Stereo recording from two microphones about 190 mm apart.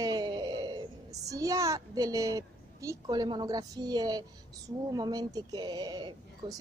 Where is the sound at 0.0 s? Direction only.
20° right (ahead or behind).